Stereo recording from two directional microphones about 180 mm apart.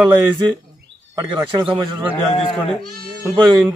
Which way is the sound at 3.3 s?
25° right (ahead or behind).